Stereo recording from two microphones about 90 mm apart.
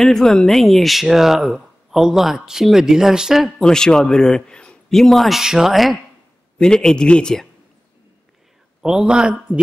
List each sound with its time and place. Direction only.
0.0 s speech: 5° left (ahead or behind)
8.8 s a man's voice: 5° right (ahead or behind)